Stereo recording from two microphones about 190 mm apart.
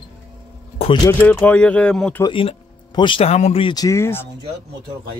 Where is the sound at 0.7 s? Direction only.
25° left (ahead or behind).